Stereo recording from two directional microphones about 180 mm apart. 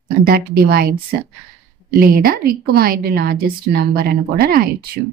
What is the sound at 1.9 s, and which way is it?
Speech, 55° right (ahead or behind).